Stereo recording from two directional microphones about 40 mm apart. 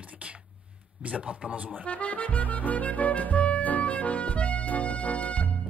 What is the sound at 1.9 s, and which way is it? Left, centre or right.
Music, left.